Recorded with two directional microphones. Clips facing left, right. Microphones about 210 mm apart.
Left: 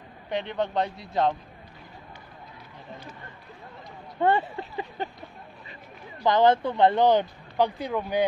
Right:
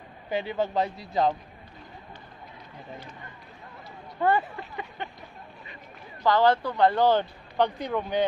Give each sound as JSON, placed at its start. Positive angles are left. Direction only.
{"t": 0.3, "sound": "a man's voice", "side_deg": -5}
{"t": 4.2, "sound": "speech", "side_deg": 25}
{"t": 6.2, "sound": "speech", "side_deg": 20}